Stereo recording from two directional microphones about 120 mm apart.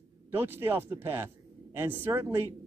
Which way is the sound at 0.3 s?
20° right (ahead or behind).